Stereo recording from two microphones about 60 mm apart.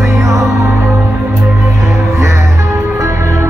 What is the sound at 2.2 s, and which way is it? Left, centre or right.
Music, right.